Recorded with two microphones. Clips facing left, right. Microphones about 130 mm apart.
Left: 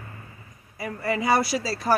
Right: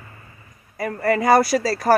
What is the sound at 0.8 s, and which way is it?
Speech, 55° right (ahead or behind).